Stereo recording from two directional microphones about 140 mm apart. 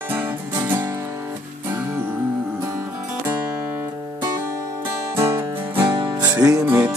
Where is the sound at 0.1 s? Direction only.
15° right (ahead or behind).